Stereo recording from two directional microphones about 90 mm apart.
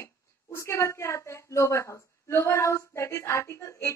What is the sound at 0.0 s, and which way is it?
Speech, 35° left (ahead or behind).